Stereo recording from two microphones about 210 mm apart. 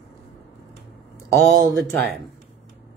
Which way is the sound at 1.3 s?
65° right (ahead or behind).